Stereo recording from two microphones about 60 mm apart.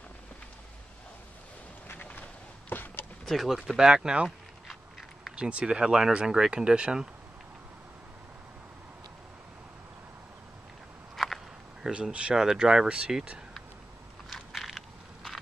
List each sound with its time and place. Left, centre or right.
1.9 s vehicle: left
2.7 s a sound: left
3.3 s speech: centre
5.3 s speech: centre
11.2 s walk: centre
11.9 s speech: centre
14.3 s crushing: centre